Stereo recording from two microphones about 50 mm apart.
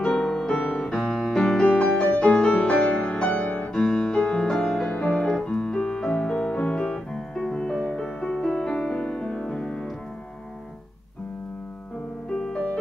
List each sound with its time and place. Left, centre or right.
0.0 s music: centre
0.5 s music: left
0.9 s music: centre
2.0 s music: left
5.0 s piano: centre
7.3 s music: centre
12.4 s music: centre